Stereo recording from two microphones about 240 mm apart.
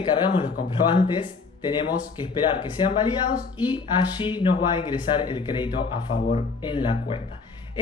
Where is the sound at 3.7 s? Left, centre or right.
Centre.